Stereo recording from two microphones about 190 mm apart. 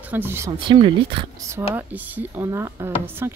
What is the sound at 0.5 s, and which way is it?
Speech, 25° right (ahead or behind).